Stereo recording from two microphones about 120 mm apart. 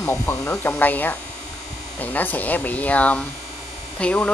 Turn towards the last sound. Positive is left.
turn(degrees=10)  # may be behind; listen again after turning